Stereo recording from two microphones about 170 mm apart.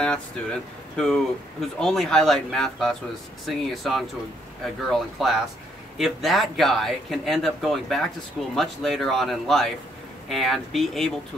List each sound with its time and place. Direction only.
0.0 s speech: 5° left (ahead or behind)